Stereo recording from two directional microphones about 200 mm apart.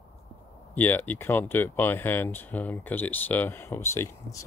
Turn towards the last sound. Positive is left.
turn(degrees=15)  # may be behind; listen again after turning